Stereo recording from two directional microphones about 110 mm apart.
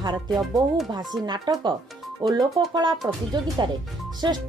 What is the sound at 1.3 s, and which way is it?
Speech, 45° right (ahead or behind).